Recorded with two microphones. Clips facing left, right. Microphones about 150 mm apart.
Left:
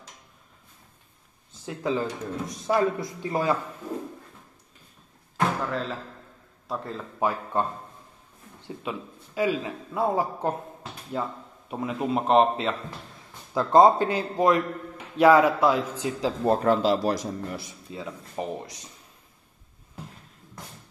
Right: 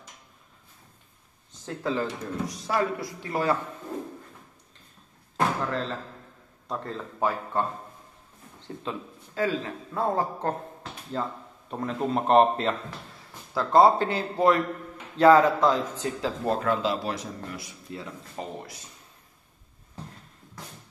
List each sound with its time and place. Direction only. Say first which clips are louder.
1.7 s speech: left 1 dB; 15° left (ahead or behind)
5.6 s a man's voice: even; centre (ahead or behind)
7.2 s a man's voice: left 1 dB; 15° left (ahead or behind)
8.6 s a man's voice: left 1 dB; 15° left (ahead or behind)
13.6 s a man's voice: left 2 dB; 20° left (ahead or behind)
16.5 s speech: left 4 dB; 40° left (ahead or behind)
17.9 s a man's voice: left 3 dB; 15° left (ahead or behind)